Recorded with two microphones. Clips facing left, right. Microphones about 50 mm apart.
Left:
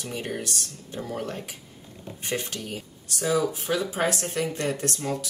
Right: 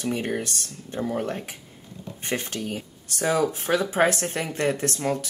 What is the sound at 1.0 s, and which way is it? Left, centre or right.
Speech, right.